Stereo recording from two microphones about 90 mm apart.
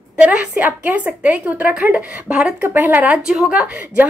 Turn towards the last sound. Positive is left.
turn(degrees=-15)  # may be behind; listen again after turning